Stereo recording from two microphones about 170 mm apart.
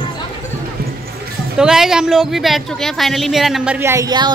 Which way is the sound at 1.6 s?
5° right (ahead or behind).